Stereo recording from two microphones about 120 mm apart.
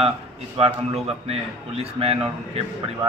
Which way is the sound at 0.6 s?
55° right (ahead or behind).